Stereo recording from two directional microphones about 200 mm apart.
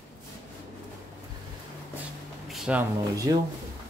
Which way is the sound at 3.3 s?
15° right (ahead or behind).